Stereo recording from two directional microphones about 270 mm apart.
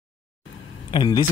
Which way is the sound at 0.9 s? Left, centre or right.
Centre.